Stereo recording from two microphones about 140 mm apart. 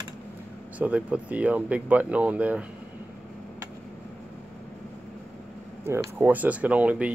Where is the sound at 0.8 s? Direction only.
10° right (ahead or behind).